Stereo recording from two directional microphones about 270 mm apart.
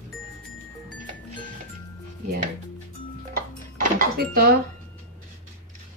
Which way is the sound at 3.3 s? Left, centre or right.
Right.